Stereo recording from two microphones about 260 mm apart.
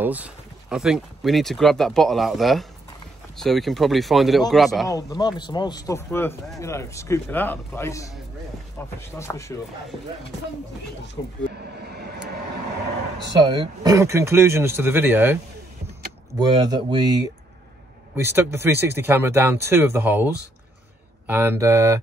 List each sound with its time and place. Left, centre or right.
0.0 s speech: centre
4.8 s speech: centre
11.2 s speech: centre
11.8 s vehicle: right
13.3 s speech: centre
16.3 s speech: centre